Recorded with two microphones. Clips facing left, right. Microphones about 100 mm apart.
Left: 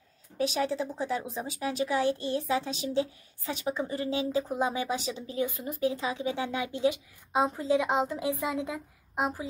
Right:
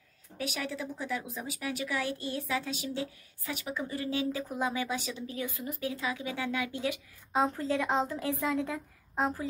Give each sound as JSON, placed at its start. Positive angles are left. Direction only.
{"t": 0.4, "sound": "speech", "side_deg": 30}